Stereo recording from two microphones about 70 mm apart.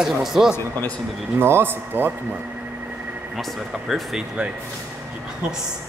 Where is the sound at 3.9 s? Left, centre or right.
Centre.